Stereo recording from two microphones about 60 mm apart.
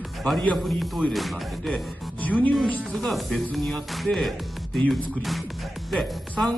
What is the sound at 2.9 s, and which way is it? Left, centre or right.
Speech, centre.